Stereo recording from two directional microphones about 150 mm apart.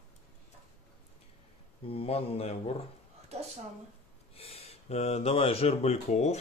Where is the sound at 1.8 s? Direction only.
40° left (ahead or behind).